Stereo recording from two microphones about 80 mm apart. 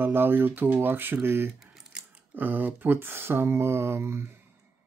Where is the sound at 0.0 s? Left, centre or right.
Right.